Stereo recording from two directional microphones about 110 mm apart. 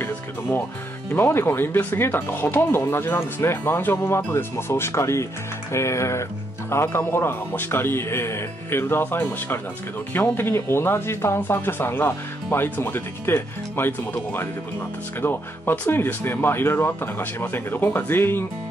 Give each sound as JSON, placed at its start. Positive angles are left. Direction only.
{"t": 0.0, "sound": "music", "side_deg": 20}
{"t": 1.1, "sound": "speech", "side_deg": 20}